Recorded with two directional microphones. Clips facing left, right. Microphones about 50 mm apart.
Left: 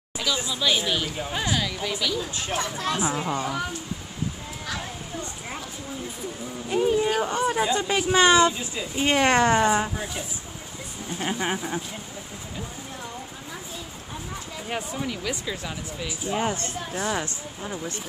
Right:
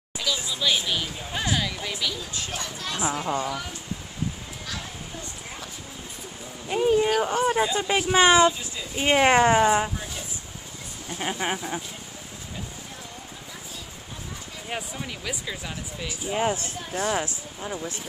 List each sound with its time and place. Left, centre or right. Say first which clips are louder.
0.2 s speech: left 1 dB; centre
2.3 s speech: left 5 dB; left
6.7 s speech: right 1 dB; centre
11.1 s speech: left 1 dB; centre
14.7 s speech: left 3 dB; centre